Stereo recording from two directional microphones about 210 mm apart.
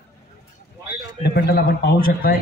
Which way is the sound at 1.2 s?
50° left (ahead or behind).